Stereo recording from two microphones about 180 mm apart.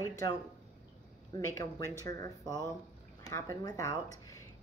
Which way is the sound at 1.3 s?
15° left (ahead or behind).